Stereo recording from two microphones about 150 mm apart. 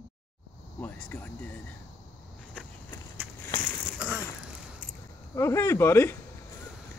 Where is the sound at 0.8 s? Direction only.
10° left (ahead or behind).